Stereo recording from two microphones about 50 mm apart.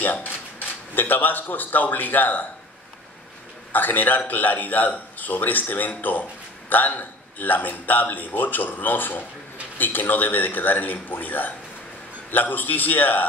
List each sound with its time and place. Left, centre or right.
0.0 s a man's voice: left
3.7 s a man's voice: left